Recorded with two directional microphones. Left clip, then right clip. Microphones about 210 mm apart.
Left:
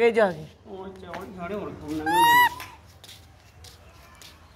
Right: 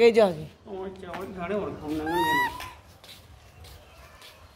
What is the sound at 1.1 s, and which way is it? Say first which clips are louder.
Speech: right 2 dB; 20° left (ahead or behind).